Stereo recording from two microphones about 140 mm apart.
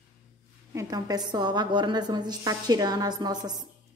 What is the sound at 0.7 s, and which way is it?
A woman's voice, 30° right (ahead or behind).